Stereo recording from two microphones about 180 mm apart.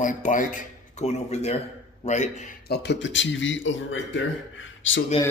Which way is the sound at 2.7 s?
70° left (ahead or behind).